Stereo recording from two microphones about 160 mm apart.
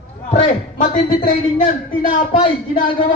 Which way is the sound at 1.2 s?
55° left (ahead or behind).